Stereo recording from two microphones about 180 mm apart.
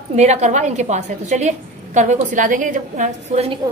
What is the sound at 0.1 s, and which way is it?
A woman's voice, 40° right (ahead or behind).